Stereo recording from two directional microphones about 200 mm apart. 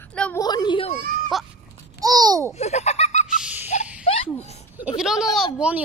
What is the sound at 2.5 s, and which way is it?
Baby laughter, 35° left (ahead or behind).